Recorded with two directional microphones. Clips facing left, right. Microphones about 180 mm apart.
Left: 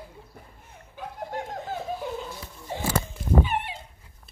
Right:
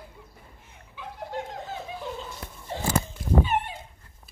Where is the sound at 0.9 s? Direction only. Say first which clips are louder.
Left 1 dB; 50° left (ahead or behind).